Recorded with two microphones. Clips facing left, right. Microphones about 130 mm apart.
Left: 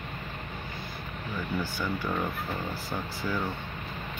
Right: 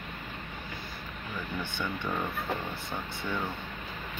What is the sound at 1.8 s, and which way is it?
Speech, 5° left (ahead or behind).